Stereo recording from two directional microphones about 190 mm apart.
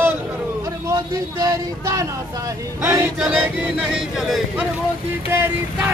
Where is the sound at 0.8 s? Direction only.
20° right (ahead or behind).